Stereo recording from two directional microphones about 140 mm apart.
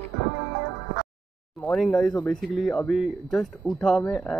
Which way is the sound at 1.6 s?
5° left (ahead or behind).